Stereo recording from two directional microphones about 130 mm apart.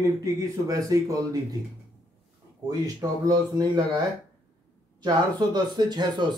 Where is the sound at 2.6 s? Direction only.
30° right (ahead or behind).